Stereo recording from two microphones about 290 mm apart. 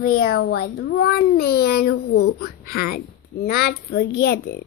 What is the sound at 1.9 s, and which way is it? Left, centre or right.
Speech, left.